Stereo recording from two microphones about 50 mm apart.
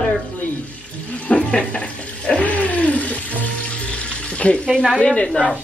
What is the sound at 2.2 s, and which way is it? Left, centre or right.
Music, left.